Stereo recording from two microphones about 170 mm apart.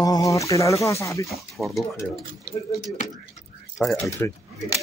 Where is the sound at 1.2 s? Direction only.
Centre (ahead or behind).